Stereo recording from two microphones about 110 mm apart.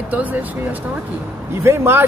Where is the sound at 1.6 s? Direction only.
20° right (ahead or behind).